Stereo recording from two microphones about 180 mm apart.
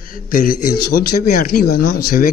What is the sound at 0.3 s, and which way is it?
A man's voice, 50° left (ahead or behind).